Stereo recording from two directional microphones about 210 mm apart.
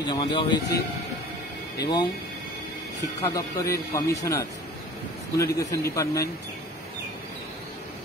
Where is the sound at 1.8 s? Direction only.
20° left (ahead or behind).